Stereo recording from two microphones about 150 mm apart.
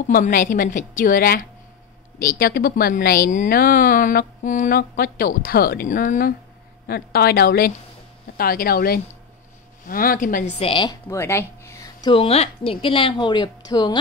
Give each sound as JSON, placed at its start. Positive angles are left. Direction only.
{"t": 0.1, "sound": "a woman's voice", "side_deg": 65}
{"t": 6.9, "sound": "a woman's voice", "side_deg": 90}
{"t": 9.8, "sound": "a woman's voice", "side_deg": 70}
{"t": 10.6, "sound": "a woman's voice", "side_deg": 35}
{"t": 11.1, "sound": "a sound", "side_deg": 15}
{"t": 12.1, "sound": "a woman's voice", "side_deg": 40}